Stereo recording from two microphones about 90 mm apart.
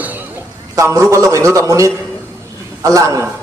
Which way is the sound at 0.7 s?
35° right (ahead or behind).